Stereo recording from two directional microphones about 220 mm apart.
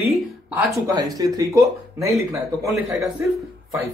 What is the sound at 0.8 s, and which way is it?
Speech, 15° right (ahead or behind).